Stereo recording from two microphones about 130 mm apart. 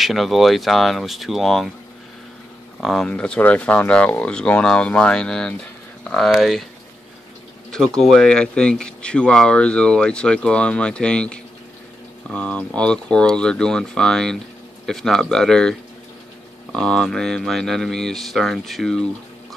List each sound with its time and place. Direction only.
0.0 s speech: centre (ahead or behind)
2.8 s speech: centre (ahead or behind)
7.7 s speech: 5° left (ahead or behind)
16.7 s speech: 5° left (ahead or behind)